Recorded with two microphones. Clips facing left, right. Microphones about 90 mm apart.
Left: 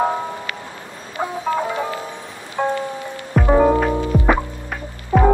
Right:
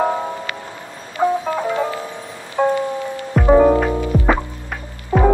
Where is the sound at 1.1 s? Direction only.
10° left (ahead or behind).